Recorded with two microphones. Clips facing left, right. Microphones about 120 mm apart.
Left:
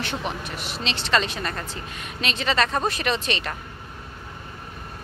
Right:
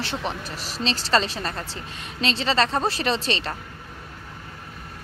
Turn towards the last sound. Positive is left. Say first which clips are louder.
# right 1 dB
turn(degrees=-30)  # may be behind; listen again after turning